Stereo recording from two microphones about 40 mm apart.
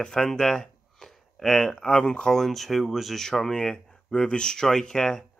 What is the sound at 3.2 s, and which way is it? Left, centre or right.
Speech, centre.